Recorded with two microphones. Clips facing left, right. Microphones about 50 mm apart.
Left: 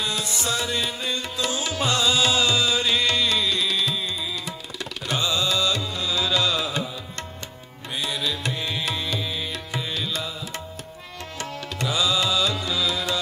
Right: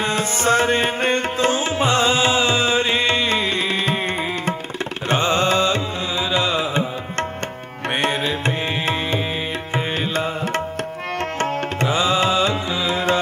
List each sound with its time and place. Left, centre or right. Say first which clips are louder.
0.0 s music: right 7 dB; right
6.1 s music: right 3 dB; right
7.9 s music: right 8 dB; right
8.2 s music: right 6 dB; right